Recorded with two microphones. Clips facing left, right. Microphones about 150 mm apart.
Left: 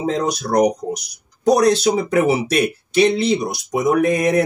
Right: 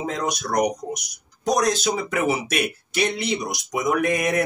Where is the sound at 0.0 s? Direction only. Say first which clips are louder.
Left 6 dB; 30° left (ahead or behind).